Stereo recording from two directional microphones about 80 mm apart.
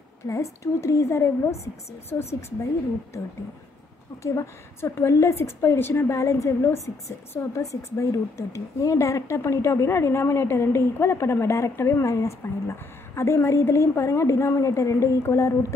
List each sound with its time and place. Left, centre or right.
0.3 s a woman's voice: left
4.2 s a woman's voice: left